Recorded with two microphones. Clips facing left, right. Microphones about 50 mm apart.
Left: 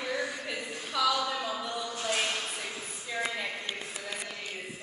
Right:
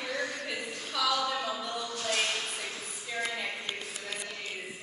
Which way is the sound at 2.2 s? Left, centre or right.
Centre.